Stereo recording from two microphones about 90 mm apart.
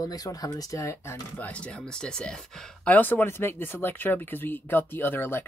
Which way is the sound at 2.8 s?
20° left (ahead or behind).